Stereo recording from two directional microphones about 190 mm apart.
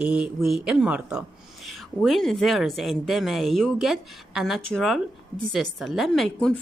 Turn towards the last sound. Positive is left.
turn(degrees=5)  # may be behind; listen again after turning